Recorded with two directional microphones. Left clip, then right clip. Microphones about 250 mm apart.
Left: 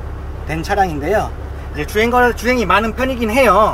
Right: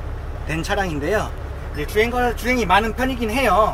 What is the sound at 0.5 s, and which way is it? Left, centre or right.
Speech, centre.